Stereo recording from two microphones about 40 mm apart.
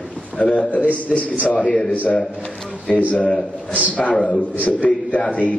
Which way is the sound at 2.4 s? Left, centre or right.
Left.